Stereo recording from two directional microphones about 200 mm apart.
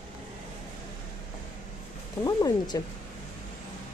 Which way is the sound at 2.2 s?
20° left (ahead or behind).